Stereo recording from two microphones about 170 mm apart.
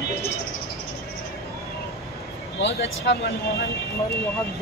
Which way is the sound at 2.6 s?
90° left.